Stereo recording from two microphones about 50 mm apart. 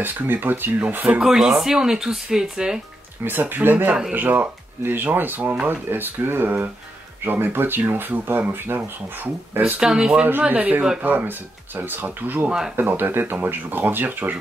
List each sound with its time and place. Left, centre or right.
0.0 s speech: right
1.2 s speech: centre
3.3 s speech: right
5.7 s speech: right
9.8 s speech: centre
10.5 s speech: right